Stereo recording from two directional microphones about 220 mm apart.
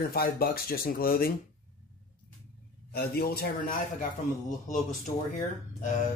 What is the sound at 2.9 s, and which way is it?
Speech, 45° left (ahead or behind).